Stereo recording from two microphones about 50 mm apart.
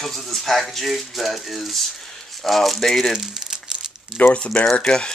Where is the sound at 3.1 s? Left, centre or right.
Centre.